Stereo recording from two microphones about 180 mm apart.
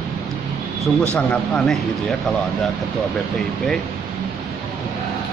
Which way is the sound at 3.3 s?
5° left (ahead or behind).